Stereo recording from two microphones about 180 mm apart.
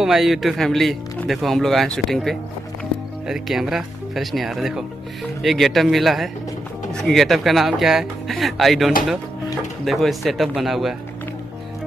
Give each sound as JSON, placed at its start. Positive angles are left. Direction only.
{"t": 0.0, "sound": "speech", "side_deg": 0}